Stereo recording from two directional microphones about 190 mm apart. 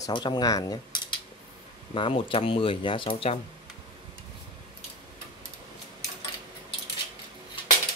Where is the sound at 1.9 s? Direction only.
30° left (ahead or behind).